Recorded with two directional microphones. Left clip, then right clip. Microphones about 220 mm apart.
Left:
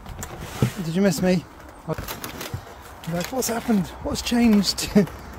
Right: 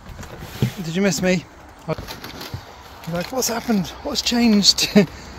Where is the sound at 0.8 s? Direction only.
20° left (ahead or behind).